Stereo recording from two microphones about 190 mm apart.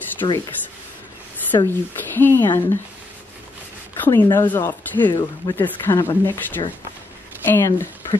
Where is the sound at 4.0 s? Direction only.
10° left (ahead or behind).